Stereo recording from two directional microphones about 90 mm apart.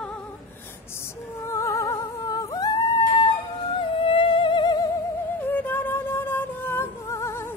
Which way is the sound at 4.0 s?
80° left.